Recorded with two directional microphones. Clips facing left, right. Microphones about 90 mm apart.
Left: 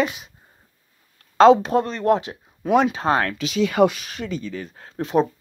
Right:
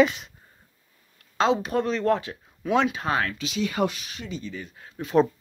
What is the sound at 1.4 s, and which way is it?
Speech, 40° left (ahead or behind).